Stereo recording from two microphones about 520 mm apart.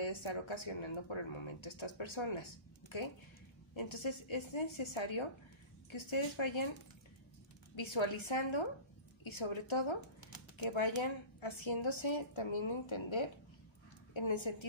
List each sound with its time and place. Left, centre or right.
0.0 s speech: left
7.7 s speech: left
9.9 s a sound: left
10.6 s speech: left